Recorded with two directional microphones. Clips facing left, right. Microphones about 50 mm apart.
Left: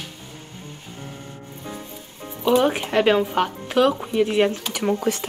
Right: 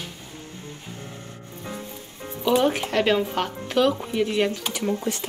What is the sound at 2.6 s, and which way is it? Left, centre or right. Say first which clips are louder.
Speech: left 1 dB; centre.